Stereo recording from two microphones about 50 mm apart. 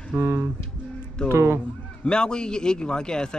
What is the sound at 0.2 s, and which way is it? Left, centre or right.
Speech, right.